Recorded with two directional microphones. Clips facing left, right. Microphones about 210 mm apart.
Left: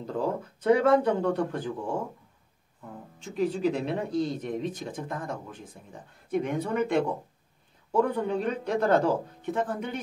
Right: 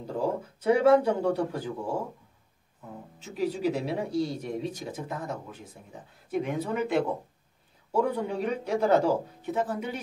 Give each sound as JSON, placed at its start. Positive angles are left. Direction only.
{"t": 0.0, "sound": "speech", "side_deg": -10}
{"t": 3.2, "sound": "speech", "side_deg": -5}